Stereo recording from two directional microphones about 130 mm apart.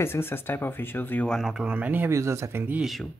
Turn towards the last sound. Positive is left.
turn(degrees=0)  # may be behind; listen again after turning